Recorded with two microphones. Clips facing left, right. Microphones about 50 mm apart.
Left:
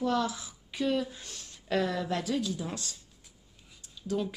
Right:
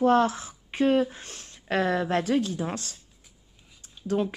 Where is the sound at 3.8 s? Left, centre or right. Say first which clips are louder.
Right 5 dB; right.